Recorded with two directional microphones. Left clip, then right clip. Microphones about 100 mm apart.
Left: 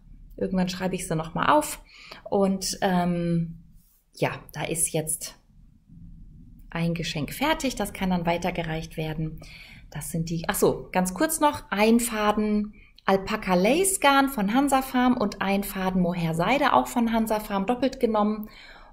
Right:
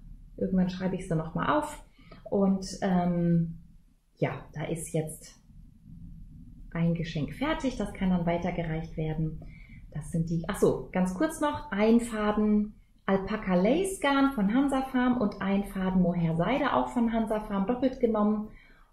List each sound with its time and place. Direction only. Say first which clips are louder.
0.4 s a woman's voice: left 4 dB; 15° left (ahead or behind)
6.7 s a woman's voice: left 4 dB; 15° left (ahead or behind)